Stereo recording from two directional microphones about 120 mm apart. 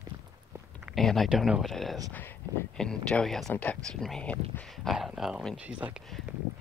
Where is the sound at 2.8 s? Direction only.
5° left (ahead or behind).